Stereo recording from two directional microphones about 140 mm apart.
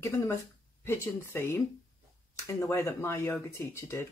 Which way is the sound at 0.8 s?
20° left (ahead or behind).